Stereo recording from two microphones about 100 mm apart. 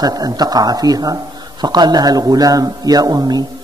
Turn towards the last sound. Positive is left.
turn(degrees=-40)  # may be behind; listen again after turning